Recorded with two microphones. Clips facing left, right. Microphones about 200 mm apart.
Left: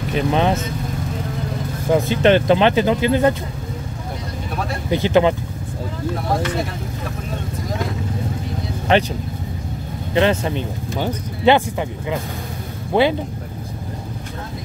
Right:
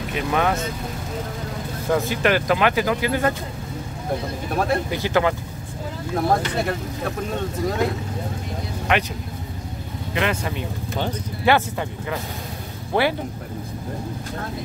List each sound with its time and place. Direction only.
0.1 s speech: 25° left (ahead or behind)
1.9 s speech: 20° left (ahead or behind)
4.9 s speech: 20° left (ahead or behind)
8.9 s speech: 30° left (ahead or behind)
10.1 s speech: 30° left (ahead or behind)
12.9 s speech: 15° left (ahead or behind)